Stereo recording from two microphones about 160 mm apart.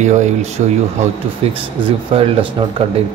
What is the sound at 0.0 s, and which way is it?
Speech, 45° right (ahead or behind).